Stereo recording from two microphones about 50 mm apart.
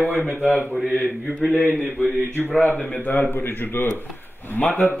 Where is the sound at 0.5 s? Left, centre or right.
Left.